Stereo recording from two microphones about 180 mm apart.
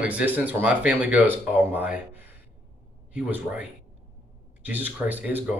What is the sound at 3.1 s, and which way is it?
Speech, 10° right (ahead or behind).